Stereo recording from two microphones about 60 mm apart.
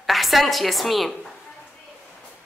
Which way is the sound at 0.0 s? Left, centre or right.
Centre.